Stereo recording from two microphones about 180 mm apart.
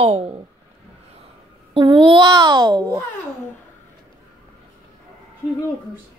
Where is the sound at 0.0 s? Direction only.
35° right (ahead or behind).